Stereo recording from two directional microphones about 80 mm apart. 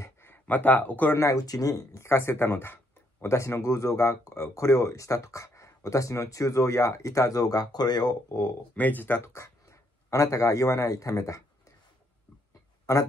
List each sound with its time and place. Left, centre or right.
0.0 s a sound: left
1.1 s speech: left
8.7 s speech: left
9.3 s speech: left